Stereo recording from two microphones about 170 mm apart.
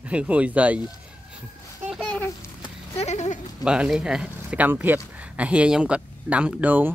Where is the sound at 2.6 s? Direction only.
40° left (ahead or behind).